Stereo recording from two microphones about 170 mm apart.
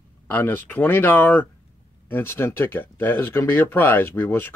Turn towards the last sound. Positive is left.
turn(degrees=10)  # may be behind; listen again after turning